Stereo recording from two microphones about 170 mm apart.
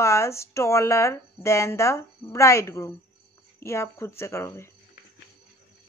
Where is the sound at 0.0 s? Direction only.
15° left (ahead or behind).